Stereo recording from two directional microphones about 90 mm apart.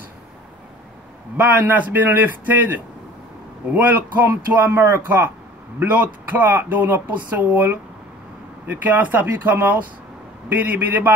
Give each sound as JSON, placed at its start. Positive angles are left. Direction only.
{"t": 1.3, "sound": "speech", "side_deg": -20}